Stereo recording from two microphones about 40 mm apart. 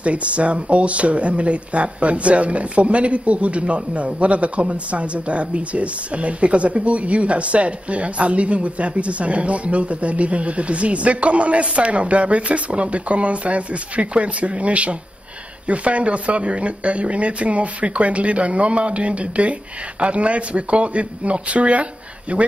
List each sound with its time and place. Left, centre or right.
0.0 s speech: right